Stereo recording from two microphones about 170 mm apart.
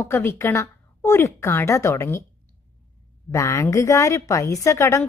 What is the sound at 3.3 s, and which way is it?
A woman's voice, 15° left (ahead or behind).